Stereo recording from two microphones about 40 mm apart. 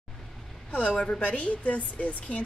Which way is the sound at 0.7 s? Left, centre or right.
Left.